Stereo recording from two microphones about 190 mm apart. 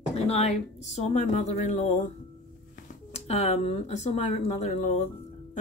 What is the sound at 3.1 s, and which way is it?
Speech, 35° left (ahead or behind).